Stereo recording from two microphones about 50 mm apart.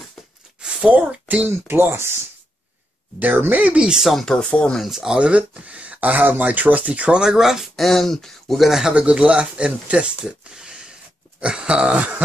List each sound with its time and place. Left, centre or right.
0.6 s a sound: centre
0.9 s speech: right
1.5 s speech: right
3.2 s speech: right
3.7 s speech: centre
4.2 s speech: centre
4.7 s speech: centre
5.2 s speech: right
7.2 s speech: centre
7.7 s speech: centre
8.5 s speech: centre
8.9 s speech: right